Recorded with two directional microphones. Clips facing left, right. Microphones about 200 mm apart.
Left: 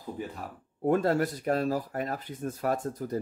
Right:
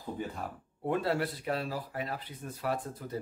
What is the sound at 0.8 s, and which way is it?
Speech, 45° left (ahead or behind).